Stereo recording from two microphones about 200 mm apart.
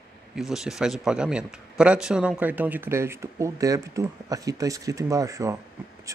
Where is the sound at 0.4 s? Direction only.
Centre (ahead or behind).